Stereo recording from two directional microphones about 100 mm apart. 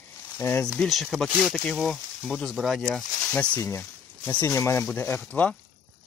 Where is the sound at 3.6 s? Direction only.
25° left (ahead or behind).